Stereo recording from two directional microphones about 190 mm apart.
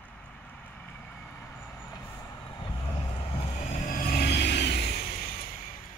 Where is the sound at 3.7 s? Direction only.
45° left (ahead or behind).